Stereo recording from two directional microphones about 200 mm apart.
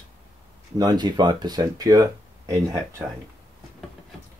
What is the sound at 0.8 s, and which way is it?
Speech, 20° right (ahead or behind).